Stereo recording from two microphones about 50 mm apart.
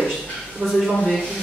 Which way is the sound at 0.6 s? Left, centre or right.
Right.